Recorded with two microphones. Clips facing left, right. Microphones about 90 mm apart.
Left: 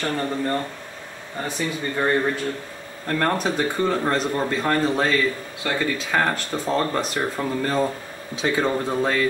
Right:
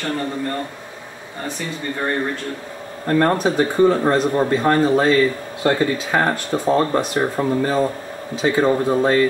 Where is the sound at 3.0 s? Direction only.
20° right (ahead or behind).